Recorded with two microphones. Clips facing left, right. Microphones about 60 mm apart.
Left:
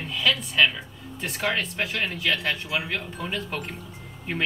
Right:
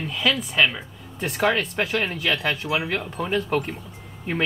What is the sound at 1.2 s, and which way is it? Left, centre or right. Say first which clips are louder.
Speech: right 5 dB; right.